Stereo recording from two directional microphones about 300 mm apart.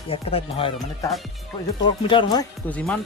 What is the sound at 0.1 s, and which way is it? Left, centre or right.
Speech, centre.